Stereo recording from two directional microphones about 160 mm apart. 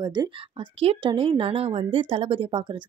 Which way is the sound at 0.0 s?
25° right (ahead or behind).